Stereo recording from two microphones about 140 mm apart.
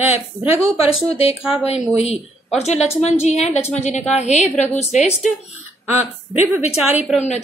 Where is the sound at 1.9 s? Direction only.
50° left (ahead or behind).